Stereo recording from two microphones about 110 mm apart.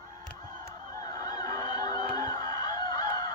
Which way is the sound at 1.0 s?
35° left (ahead or behind).